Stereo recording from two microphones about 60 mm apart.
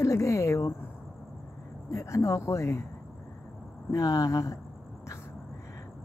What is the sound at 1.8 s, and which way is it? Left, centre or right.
Speech, left.